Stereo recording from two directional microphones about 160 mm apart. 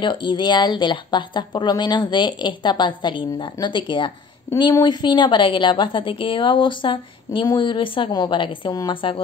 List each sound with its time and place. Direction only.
0.0 s a woman's voice: 30° left (ahead or behind)